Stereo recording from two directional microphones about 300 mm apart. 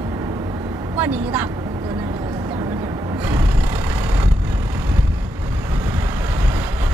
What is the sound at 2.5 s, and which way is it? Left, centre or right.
Vehicle, centre.